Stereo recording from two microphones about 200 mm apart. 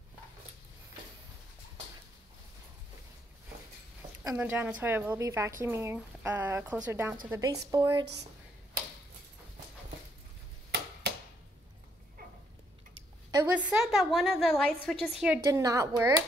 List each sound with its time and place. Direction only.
4.2 s a woman's voice: 10° right (ahead or behind)
13.5 s a woman's voice: 5° right (ahead or behind)
15.4 s a woman's voice: 15° right (ahead or behind)